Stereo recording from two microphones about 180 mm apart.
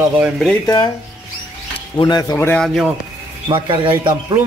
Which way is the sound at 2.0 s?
20° left (ahead or behind).